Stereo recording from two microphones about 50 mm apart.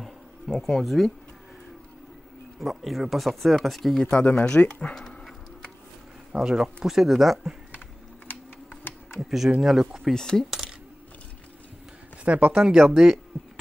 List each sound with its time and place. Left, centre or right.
0.0 s bee: centre
2.6 s speech: centre
4.0 s speech: left
4.9 s dog: centre
6.3 s speech: centre
9.2 s speech: centre
10.1 s coin: centre
12.3 s speech: right
12.5 s speech: centre
12.8 s speech: centre